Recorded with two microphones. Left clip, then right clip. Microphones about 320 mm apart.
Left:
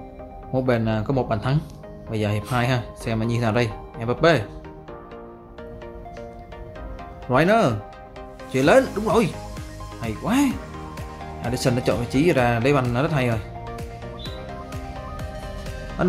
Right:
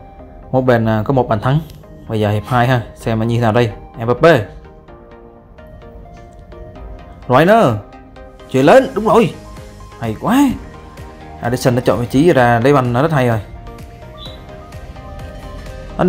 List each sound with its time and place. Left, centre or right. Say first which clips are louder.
0.5 s speech: right 9 dB; centre
7.2 s speech: right 8 dB; centre
16.0 s speech: right 8 dB; centre